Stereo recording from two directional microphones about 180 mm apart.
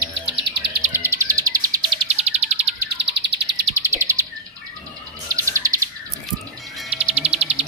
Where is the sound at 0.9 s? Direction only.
15° right (ahead or behind).